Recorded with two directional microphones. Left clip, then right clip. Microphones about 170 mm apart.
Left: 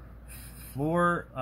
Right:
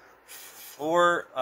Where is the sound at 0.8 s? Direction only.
15° right (ahead or behind).